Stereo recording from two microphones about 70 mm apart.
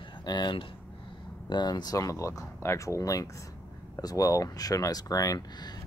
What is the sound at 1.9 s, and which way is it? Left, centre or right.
Speech, left.